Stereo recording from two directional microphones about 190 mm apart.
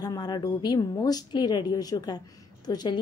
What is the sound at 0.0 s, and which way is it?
A woman's voice, 20° left (ahead or behind).